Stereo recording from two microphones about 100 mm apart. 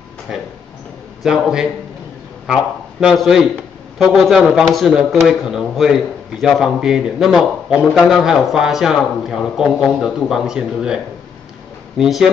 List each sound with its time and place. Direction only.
0.3 s a man's voice: 5° right (ahead or behind)
12.0 s speech: 5° right (ahead or behind)